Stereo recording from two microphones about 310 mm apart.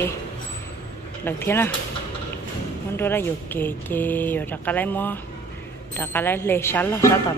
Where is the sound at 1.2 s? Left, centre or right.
Centre.